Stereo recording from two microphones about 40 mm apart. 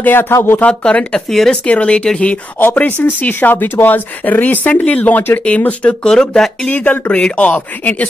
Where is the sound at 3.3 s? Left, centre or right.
Left.